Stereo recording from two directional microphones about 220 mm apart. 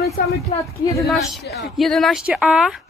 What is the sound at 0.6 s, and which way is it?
Speech, 15° left (ahead or behind).